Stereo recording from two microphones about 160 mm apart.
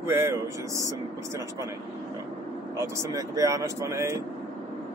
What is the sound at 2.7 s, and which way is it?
Speech, 20° right (ahead or behind).